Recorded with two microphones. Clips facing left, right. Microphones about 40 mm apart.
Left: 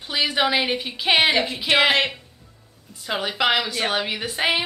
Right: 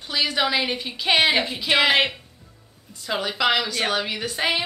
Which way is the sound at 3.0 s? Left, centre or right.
Centre.